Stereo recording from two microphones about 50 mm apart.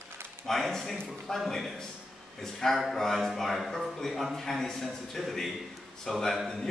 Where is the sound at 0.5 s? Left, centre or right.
Centre.